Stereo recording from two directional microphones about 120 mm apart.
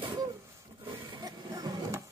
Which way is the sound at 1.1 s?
35° right (ahead or behind).